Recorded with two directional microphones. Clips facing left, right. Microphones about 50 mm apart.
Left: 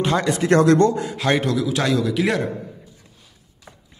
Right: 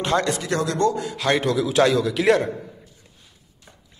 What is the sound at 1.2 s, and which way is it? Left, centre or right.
A man's voice, centre.